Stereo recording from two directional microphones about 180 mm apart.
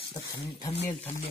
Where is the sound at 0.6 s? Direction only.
35° left (ahead or behind).